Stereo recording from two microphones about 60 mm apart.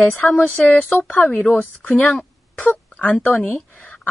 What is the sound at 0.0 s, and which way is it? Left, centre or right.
A woman's voice, left.